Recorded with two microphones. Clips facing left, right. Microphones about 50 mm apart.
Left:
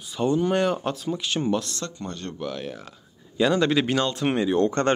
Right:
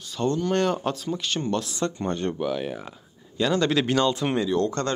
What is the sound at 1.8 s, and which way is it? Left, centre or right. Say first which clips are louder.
Speech: right 7 dB; right.